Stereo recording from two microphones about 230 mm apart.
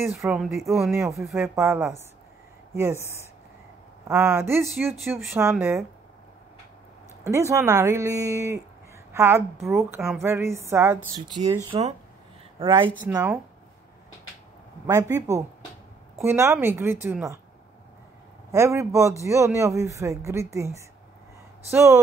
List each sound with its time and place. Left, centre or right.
0.1 s speech: centre
0.9 s a woman's voice: centre
3.0 s speech: centre
4.1 s a woman's voice: centre
7.2 s a woman's voice: centre
13.0 s a woman's voice: centre
14.9 s a woman's voice: centre
18.5 s a woman's voice: centre